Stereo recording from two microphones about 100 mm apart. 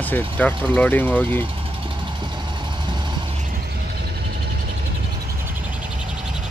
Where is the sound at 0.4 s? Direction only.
15° left (ahead or behind).